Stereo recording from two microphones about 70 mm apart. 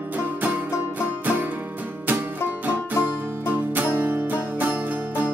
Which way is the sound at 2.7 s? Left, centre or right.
Right.